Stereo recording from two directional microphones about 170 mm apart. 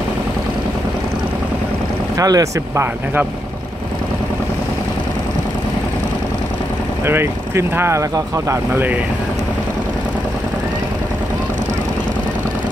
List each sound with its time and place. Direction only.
2.1 s speech: 20° right (ahead or behind)
7.1 s speech: 15° right (ahead or behind)